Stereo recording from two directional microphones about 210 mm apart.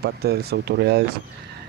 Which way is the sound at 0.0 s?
50° right (ahead or behind).